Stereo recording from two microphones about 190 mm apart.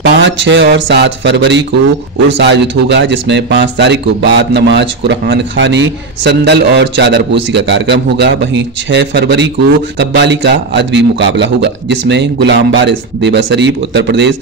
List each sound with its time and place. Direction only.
0.0 s a man's voice: 70° right (ahead or behind)